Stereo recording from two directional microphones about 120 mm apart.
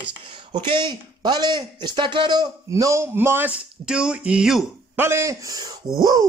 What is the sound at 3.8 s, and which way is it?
Speech, 5° right (ahead or behind).